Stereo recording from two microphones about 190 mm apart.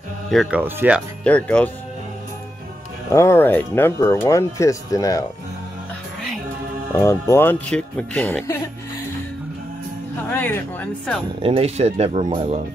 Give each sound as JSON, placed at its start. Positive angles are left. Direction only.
{"t": 0.3, "sound": "speech", "side_deg": -5}
{"t": 1.2, "sound": "speech", "side_deg": 5}
{"t": 3.1, "sound": "speech", "side_deg": 15}
{"t": 6.9, "sound": "speech", "side_deg": 15}
{"t": 10.3, "sound": "speech", "side_deg": 10}
{"t": 11.4, "sound": "speech", "side_deg": -30}